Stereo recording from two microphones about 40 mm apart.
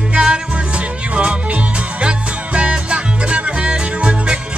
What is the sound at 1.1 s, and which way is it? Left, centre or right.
Music, right.